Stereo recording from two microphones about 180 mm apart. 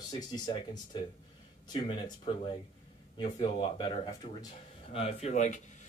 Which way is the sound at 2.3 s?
30° left (ahead or behind).